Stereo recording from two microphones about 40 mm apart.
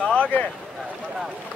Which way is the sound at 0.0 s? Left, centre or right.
Left.